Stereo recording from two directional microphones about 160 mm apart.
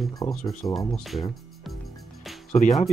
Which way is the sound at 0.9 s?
Centre (ahead or behind).